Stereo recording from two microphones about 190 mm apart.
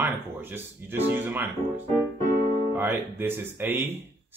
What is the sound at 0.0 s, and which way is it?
Speech, 10° right (ahead or behind).